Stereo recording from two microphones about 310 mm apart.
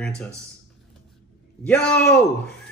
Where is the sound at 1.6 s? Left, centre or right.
Centre.